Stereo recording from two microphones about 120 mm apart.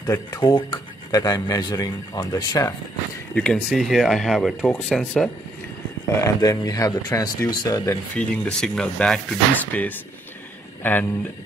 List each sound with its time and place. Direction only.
0.0 s speech: 30° left (ahead or behind)
3.3 s speech: 5° left (ahead or behind)
6.0 s speech: 25° left (ahead or behind)
8.2 s speech: 10° left (ahead or behind)